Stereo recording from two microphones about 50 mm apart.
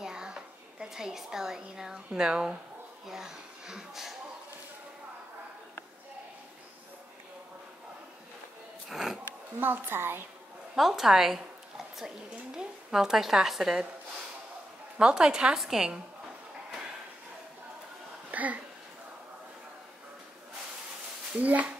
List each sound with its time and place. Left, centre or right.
0.0 s a sound: centre
0.8 s a woman's voice: centre
8.8 s speech: centre
9.6 s a child's voice: right
10.8 s a woman's voice: centre
15.0 s a woman's voice: centre
18.3 s a sound: right
21.4 s speech: right